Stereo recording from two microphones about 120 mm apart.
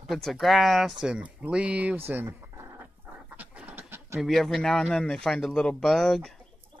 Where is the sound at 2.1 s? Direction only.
20° right (ahead or behind).